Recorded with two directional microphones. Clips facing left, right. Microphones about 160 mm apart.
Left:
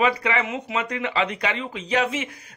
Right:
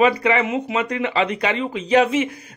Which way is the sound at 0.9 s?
30° right (ahead or behind).